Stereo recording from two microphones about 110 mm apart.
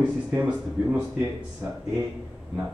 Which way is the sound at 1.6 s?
20° right (ahead or behind).